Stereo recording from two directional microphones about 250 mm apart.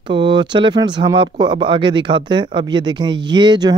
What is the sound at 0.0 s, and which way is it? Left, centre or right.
Speech, centre.